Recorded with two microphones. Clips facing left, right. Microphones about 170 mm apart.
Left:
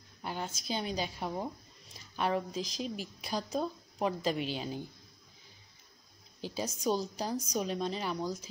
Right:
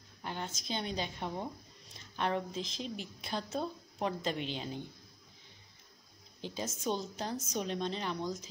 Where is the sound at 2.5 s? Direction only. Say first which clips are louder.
Left 2 dB; 25° right (ahead or behind).